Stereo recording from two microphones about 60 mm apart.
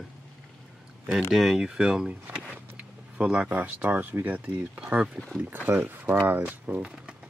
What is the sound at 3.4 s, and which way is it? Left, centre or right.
Speech, right.